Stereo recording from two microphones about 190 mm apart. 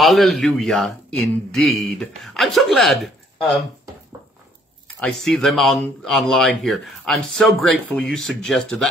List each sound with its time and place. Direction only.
0.0 s speech: centre (ahead or behind)
5.0 s speech: centre (ahead or behind)